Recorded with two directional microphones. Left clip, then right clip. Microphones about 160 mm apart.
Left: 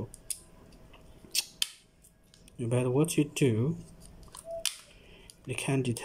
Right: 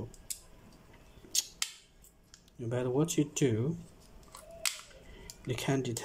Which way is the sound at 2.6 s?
10° left (ahead or behind).